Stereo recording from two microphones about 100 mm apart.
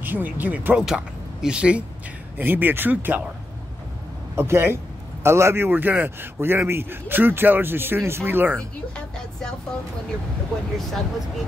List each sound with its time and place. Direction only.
0.0 s a man's voice: 20° right (ahead or behind)
4.4 s a man's voice: 20° right (ahead or behind)
8.5 s speech: 5° left (ahead or behind)
10.8 s speech: centre (ahead or behind)